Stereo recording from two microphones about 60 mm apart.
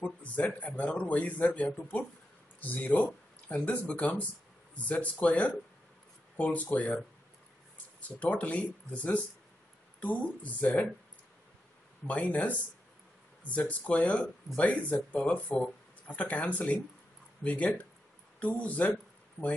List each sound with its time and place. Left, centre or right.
0.0 s speech: left
8.2 s speech: left
12.1 s speech: left